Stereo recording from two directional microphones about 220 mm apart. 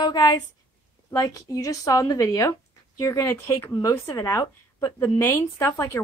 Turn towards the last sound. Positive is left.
turn(degrees=10)  # may be behind; listen again after turning